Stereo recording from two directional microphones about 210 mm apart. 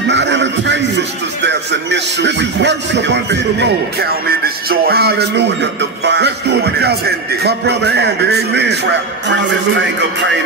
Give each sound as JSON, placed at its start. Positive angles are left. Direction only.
{"t": 0.1, "sound": "a man's voice", "side_deg": -55}